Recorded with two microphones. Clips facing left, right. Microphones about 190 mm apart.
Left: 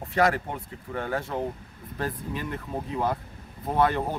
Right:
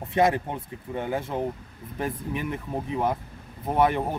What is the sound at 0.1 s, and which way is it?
Speech, 20° right (ahead or behind).